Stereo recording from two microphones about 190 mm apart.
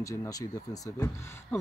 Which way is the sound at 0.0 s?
20° left (ahead or behind).